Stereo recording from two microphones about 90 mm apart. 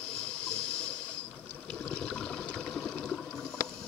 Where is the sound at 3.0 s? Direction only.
5° left (ahead or behind).